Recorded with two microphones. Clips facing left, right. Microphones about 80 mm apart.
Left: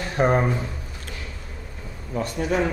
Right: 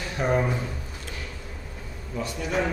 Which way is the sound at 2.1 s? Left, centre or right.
Left.